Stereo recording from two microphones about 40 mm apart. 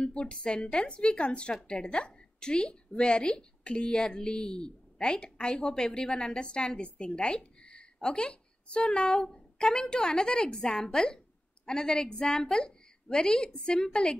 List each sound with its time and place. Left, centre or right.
0.0 s a woman's voice: left